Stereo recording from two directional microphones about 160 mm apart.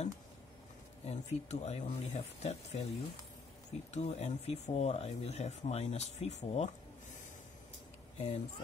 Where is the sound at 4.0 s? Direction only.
40° left (ahead or behind).